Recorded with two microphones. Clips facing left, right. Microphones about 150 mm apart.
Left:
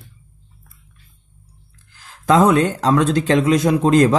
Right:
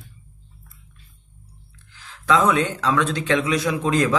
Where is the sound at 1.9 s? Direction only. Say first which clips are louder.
Left 4 dB; 40° left (ahead or behind).